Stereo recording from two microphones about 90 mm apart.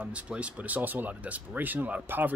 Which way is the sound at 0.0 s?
15° right (ahead or behind).